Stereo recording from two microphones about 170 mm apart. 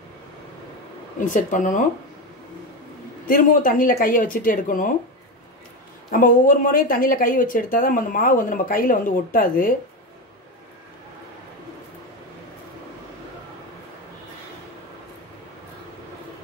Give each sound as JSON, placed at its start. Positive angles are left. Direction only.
{"t": 1.3, "sound": "speech", "side_deg": 50}
{"t": 3.3, "sound": "speech", "side_deg": 55}
{"t": 6.0, "sound": "a woman's voice", "side_deg": 55}